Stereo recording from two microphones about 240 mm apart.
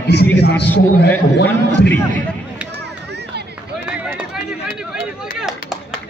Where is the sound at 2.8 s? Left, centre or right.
Right.